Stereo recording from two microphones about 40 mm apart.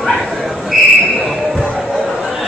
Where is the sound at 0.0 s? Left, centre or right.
Centre.